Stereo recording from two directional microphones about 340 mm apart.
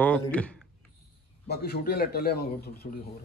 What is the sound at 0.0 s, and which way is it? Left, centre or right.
Speech, centre.